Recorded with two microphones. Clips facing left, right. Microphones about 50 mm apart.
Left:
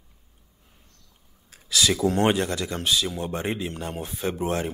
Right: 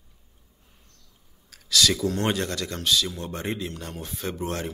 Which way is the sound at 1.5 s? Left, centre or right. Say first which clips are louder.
Even; centre.